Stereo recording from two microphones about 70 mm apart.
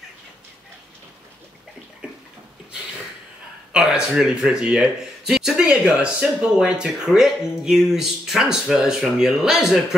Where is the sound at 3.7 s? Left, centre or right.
Centre.